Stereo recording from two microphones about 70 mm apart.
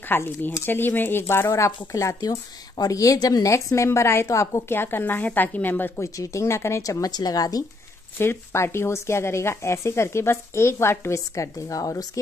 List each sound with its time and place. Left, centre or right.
0.1 s a woman's voice: left
4.6 s a woman's voice: left
5.9 s speech: left
7.0 s a woman's voice: left
8.2 s speech: left